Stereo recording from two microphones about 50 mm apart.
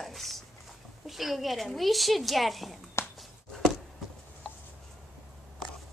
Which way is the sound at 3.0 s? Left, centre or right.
Left.